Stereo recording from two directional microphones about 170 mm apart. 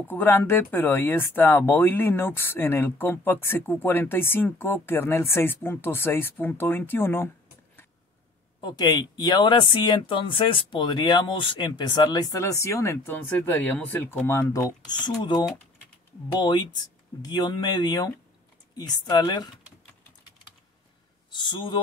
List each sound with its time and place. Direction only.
0.0 s speech: 10° left (ahead or behind)
8.5 s speech: 25° left (ahead or behind)
21.3 s speech: 25° left (ahead or behind)